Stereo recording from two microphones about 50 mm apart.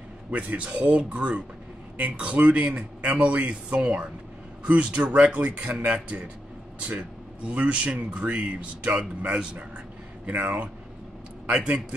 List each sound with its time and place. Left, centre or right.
0.6 s speech: right
10.2 s speech: right